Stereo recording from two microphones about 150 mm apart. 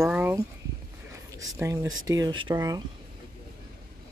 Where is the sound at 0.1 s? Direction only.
10° right (ahead or behind).